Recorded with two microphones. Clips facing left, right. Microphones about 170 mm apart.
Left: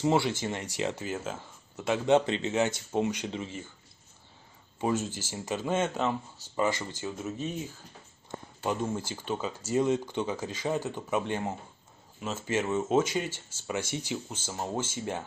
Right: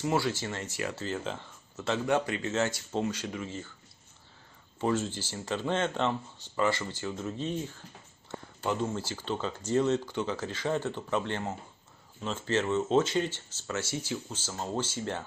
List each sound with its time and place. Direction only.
0.0 s speech: 20° left (ahead or behind); by 1.4 s 5° left (ahead or behind)
1.8 s speech: 20° left (ahead or behind)
4.7 s speech: 15° left (ahead or behind)
8.6 s speech: 15° left (ahead or behind)